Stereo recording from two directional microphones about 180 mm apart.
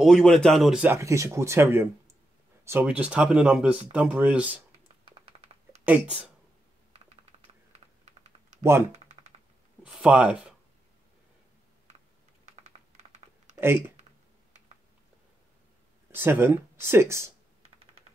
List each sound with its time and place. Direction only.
0.0 s speech: centre (ahead or behind)
0.9 s speech: 15° right (ahead or behind)
5.9 s speech: 5° right (ahead or behind)
7.7 s typing: 40° right (ahead or behind)
8.9 s a sound: 40° right (ahead or behind)
9.8 s speech: 5° right (ahead or behind)
12.6 s typing: 40° right (ahead or behind)
13.6 s speech: 10° right (ahead or behind)
16.1 s speech: 10° right (ahead or behind)